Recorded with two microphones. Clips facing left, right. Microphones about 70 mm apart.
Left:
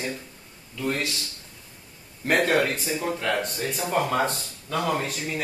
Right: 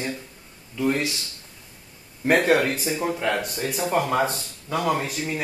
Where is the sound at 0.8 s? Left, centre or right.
Centre.